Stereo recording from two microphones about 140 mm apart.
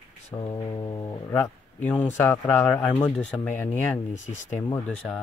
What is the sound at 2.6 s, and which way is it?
Speech, 5° left (ahead or behind).